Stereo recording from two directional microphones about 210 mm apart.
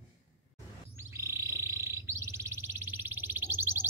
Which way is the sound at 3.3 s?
10° right (ahead or behind).